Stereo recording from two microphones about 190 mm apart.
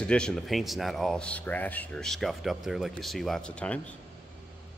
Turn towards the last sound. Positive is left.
turn(degrees=5)  # may be behind; listen again after turning